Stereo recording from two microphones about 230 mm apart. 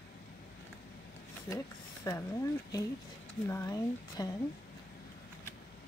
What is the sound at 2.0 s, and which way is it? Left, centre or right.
Speech, centre.